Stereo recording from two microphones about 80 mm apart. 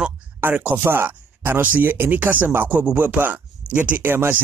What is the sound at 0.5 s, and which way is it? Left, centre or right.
Speech, centre.